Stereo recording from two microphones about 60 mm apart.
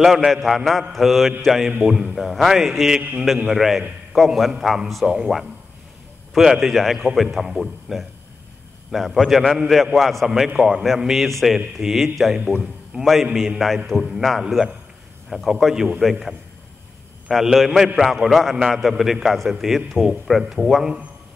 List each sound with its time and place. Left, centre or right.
0.0 s a man's voice: centre
3.0 s a man's voice: right
3.4 s a man's voice: centre
12.4 s a man's voice: centre
12.9 s a man's voice: centre
15.2 s a man's voice: centre